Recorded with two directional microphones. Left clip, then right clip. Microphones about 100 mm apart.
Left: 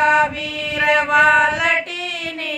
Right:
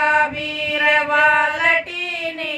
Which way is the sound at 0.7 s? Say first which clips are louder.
Left 1 dB; 25° left (ahead or behind).